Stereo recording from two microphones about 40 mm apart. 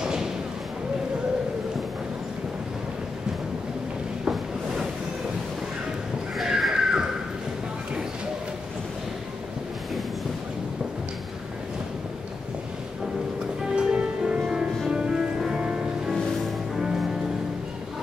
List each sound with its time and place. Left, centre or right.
0.0 s thump: centre
6.3 s crow: centre
13.7 s music: right